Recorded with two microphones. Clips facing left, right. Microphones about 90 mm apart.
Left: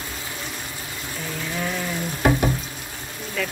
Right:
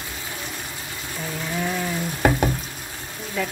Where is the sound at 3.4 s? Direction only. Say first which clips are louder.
Right 1 dB; 15° right (ahead or behind).